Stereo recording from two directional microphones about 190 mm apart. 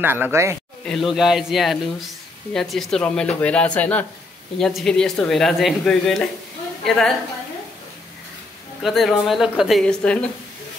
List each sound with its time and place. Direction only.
0.0 s speech: 10° right (ahead or behind)
0.8 s a woman's voice: centre (ahead or behind)
8.8 s speech: centre (ahead or behind)